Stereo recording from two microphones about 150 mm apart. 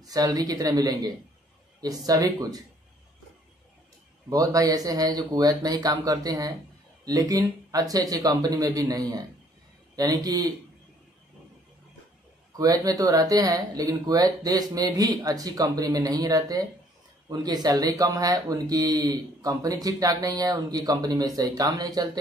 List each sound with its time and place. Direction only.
0.0 s speech: 25° right (ahead or behind)
4.3 s speech: 25° right (ahead or behind)
12.5 s speech: 25° right (ahead or behind)